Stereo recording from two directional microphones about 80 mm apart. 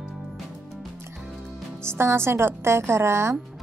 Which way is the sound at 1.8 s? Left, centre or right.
Right.